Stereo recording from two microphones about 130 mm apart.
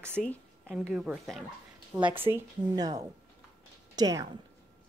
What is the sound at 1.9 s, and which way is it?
Speech, 40° right (ahead or behind).